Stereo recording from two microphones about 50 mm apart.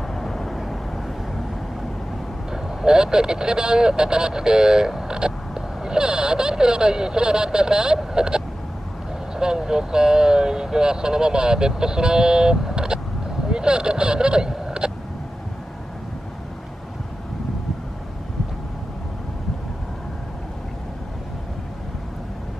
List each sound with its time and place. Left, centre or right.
0.1 s vehicle: centre
2.5 s speech: centre
9.4 s speech: centre